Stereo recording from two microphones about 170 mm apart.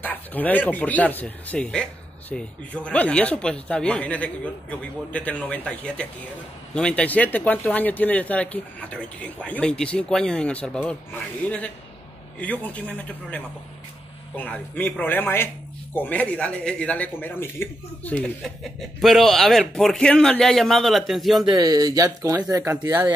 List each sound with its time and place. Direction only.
0.0 s a man's voice: 10° left (ahead or behind)
21.5 s speech: 20° right (ahead or behind)